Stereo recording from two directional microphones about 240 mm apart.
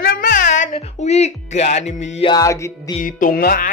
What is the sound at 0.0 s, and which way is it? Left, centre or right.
Music, left.